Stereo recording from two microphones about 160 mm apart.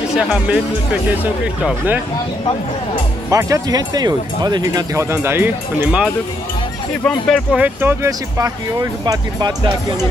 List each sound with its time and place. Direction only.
0.2 s speech: 5° right (ahead or behind)
3.3 s speech: 20° right (ahead or behind)
7.1 s speech: 5° left (ahead or behind)
7.5 s speech: 10° right (ahead or behind)
9.0 s speech: 25° right (ahead or behind)